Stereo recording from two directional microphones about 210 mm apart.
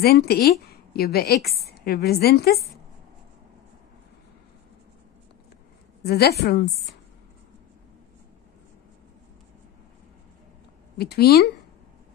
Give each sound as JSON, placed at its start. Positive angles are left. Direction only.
{"t": 0.0, "sound": "a woman's voice", "side_deg": 50}
{"t": 6.0, "sound": "a woman's voice", "side_deg": 50}
{"t": 11.0, "sound": "a woman's voice", "side_deg": 50}